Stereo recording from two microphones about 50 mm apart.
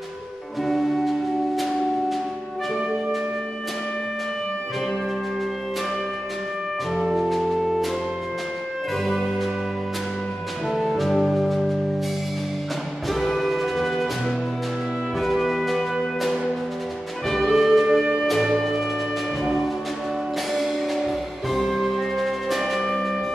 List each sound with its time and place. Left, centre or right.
0.7 s music: centre
7.1 s music: centre
9.0 s music: centre
10.7 s music: centre
13.1 s music: centre
15.1 s music: centre